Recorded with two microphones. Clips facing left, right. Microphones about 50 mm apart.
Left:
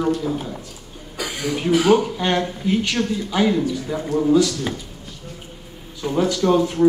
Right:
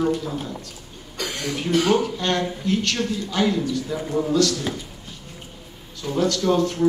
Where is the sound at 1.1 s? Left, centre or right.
Centre.